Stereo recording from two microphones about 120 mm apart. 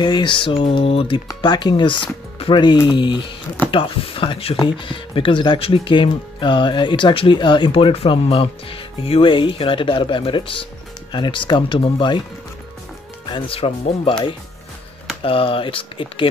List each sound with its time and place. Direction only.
0.0 s speech: 40° left (ahead or behind)
13.3 s speech: 50° left (ahead or behind)
15.2 s speech: 50° left (ahead or behind)